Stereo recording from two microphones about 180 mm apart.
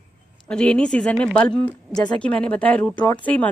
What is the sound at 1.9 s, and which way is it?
Speech, 20° left (ahead or behind).